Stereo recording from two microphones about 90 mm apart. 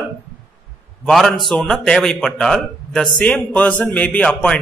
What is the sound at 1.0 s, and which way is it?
A man's voice, 5° left (ahead or behind).